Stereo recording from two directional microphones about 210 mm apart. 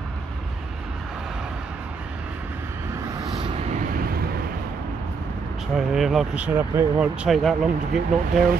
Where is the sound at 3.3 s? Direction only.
25° right (ahead or behind).